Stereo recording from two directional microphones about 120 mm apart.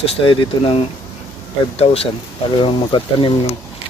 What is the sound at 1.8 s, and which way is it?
Speech, 55° left (ahead or behind).